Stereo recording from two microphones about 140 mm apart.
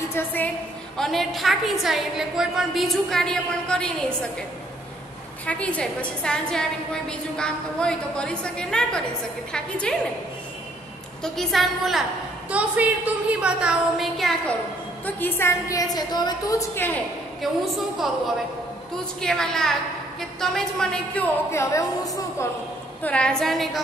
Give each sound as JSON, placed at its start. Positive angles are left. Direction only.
{"t": 0.1, "sound": "a woman's voice", "side_deg": 15}
{"t": 0.9, "sound": "a woman's voice", "side_deg": 0}
{"t": 5.5, "sound": "a woman's voice", "side_deg": 10}
{"t": 11.2, "sound": "a woman's voice", "side_deg": 0}
{"t": 15.0, "sound": "a woman's voice", "side_deg": 15}
{"t": 17.4, "sound": "a woman's voice", "side_deg": 0}
{"t": 23.0, "sound": "a woman's voice", "side_deg": 5}